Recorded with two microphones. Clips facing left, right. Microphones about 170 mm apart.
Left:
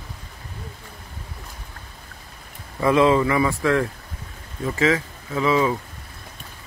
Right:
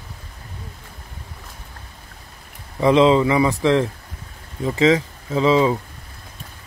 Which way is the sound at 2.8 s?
20° right (ahead or behind).